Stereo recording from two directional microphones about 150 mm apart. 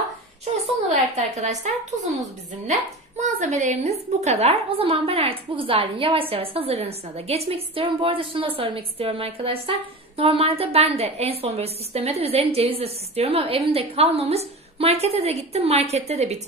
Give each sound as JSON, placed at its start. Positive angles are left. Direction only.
{"t": 0.8, "sound": "a woman's voice", "side_deg": -50}